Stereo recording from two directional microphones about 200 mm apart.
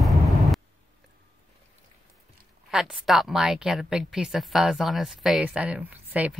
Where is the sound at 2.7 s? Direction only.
5° right (ahead or behind).